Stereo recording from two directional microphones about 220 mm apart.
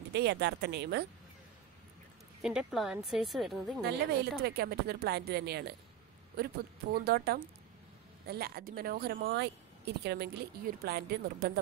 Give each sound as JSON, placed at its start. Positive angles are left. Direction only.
{"t": 0.1, "sound": "a woman's voice", "side_deg": -50}
{"t": 2.4, "sound": "a woman's voice", "side_deg": 0}
{"t": 4.4, "sound": "a woman's voice", "side_deg": -45}